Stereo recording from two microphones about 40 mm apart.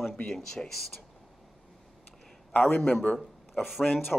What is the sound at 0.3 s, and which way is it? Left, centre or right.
Speech, centre.